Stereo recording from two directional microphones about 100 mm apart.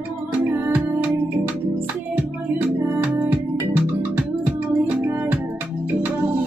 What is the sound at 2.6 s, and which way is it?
Music, 20° right (ahead or behind).